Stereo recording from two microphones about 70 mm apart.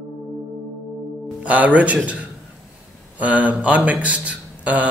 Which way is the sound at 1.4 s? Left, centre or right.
Right.